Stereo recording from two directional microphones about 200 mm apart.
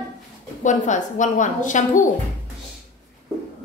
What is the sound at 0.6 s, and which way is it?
A woman's voice, 40° left (ahead or behind).